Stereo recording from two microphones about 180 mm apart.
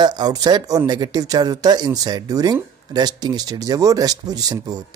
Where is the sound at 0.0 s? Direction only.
20° right (ahead or behind).